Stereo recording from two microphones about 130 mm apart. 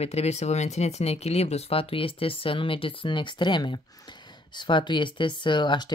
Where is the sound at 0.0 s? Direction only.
55° left (ahead or behind).